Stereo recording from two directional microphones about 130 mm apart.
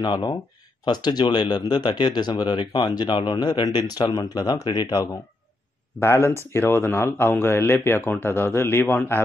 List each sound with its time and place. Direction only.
0.0 s a man's voice: 30° left (ahead or behind); by 9.2 s 15° left (ahead or behind)